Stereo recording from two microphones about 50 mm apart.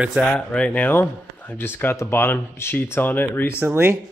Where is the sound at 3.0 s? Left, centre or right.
Left.